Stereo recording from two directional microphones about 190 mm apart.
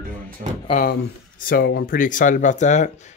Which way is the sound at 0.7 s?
45° left (ahead or behind).